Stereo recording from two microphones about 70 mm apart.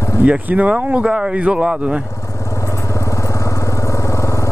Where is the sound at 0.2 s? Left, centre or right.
Right.